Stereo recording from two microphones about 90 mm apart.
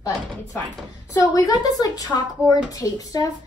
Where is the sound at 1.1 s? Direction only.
40° left (ahead or behind).